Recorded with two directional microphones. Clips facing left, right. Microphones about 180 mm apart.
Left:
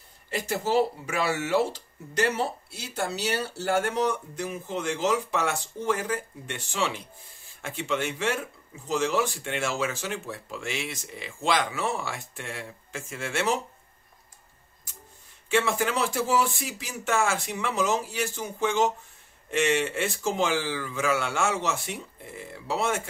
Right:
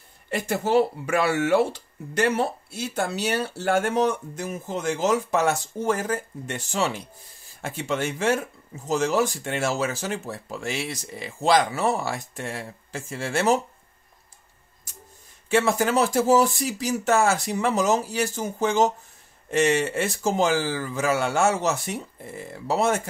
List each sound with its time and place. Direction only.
0.3 s speech: 55° right (ahead or behind); by 13.6 s 40° right (ahead or behind)
15.5 s speech: 40° right (ahead or behind)